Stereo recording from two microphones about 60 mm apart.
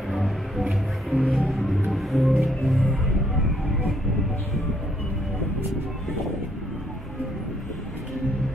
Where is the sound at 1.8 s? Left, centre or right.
Centre.